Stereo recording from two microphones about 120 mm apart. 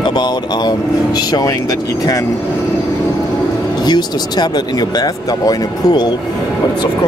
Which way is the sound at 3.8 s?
35° left (ahead or behind).